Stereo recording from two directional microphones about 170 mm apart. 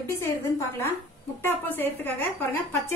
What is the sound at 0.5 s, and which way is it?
A woman's voice, 15° left (ahead or behind).